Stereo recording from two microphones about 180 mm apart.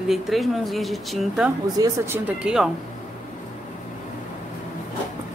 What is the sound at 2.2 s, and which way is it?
Speech, 5° right (ahead or behind).